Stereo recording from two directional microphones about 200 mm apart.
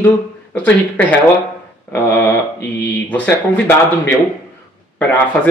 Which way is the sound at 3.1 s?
10° left (ahead or behind).